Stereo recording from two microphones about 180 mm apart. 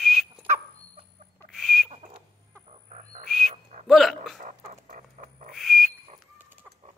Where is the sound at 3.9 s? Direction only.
Centre (ahead or behind).